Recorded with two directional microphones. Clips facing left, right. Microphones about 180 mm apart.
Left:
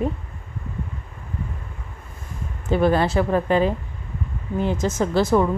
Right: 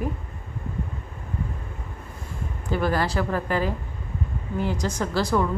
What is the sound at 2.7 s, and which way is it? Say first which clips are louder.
A woman's voice: left 6 dB; 20° left (ahead or behind).